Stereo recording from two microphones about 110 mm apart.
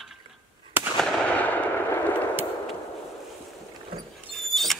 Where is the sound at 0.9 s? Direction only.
5° left (ahead or behind).